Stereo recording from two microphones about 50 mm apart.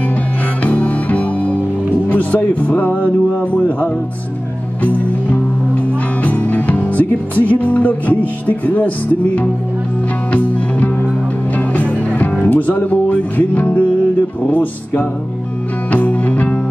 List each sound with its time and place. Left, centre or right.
0.6 s music: left
2.0 s speech: left
6.2 s music: left
8.5 s speech: left
10.3 s music: left
14.5 s speech: left
15.9 s music: left